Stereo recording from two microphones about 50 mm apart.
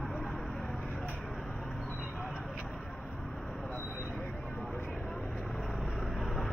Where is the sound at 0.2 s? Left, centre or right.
Centre.